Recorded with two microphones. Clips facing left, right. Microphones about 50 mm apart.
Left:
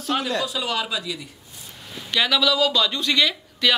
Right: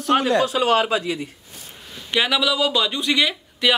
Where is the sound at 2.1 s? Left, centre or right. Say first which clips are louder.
Right 1 dB; right.